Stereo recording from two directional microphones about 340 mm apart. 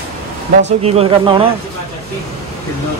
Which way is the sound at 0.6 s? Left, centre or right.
Centre.